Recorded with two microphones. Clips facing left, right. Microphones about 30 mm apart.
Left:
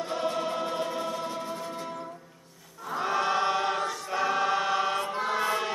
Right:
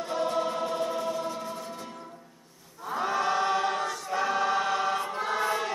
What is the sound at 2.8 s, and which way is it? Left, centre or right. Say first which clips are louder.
Chant: even; centre.